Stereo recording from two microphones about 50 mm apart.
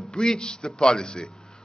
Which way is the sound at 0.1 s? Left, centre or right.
Centre.